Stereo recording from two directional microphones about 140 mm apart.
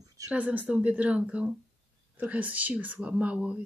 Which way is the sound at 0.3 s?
10° right (ahead or behind).